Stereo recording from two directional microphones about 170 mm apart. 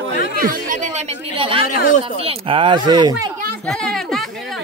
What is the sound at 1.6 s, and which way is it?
Speech, 55° left (ahead or behind).